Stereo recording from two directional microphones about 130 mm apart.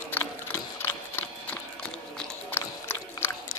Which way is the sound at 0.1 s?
15° left (ahead or behind).